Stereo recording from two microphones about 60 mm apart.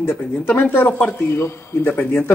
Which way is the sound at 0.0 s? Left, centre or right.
Left.